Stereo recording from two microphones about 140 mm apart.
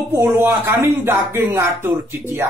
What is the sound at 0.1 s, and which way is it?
Speech, 15° right (ahead or behind).